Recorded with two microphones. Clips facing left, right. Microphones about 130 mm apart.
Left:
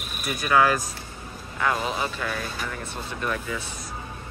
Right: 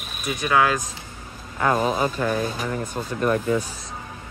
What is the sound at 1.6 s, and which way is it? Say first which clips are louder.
Speech: right 5 dB; 40° right (ahead or behind).